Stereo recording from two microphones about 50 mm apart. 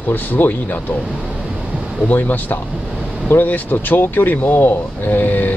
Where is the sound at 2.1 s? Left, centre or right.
Left.